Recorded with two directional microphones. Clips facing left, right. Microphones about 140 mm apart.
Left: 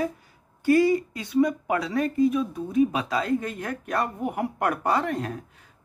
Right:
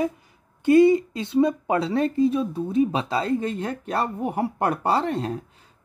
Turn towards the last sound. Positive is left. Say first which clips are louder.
# right 4 dB
turn(degrees=-30)  # may be behind; listen again after turning